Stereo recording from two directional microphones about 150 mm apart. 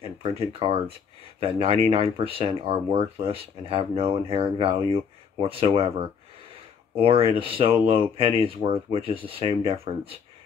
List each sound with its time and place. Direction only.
0.4 s speech: 40° right (ahead or behind)